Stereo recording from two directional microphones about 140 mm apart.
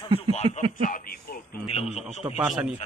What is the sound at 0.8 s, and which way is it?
Speech, 85° left.